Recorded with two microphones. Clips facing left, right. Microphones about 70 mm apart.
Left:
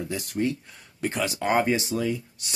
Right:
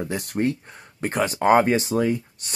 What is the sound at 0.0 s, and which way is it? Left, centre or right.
Speech, right.